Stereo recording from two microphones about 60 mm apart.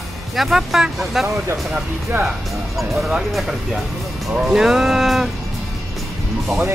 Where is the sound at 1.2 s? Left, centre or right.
Right.